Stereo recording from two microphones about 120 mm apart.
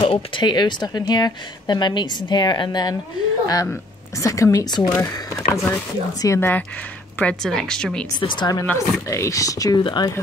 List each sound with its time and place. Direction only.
0.0 s speech: 45° left (ahead or behind)
4.2 s speech: 30° left (ahead or behind)
7.2 s speech: 10° left (ahead or behind)
8.2 s speech: 40° left (ahead or behind)
8.7 s speech: 25° left (ahead or behind)